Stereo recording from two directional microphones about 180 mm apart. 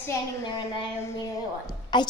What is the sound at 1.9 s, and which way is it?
Speech, 25° left (ahead or behind).